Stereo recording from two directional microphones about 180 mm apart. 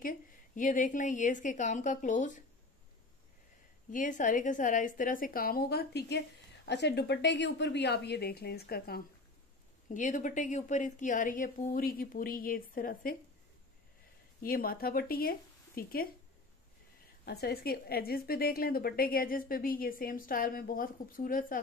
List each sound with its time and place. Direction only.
0.0 s a woman's voice: 50° left (ahead or behind)
3.9 s a woman's voice: 45° left (ahead or behind)
9.8 s a woman's voice: 45° left (ahead or behind)
14.4 s speech: 55° left (ahead or behind)
17.2 s a woman's voice: 60° left (ahead or behind)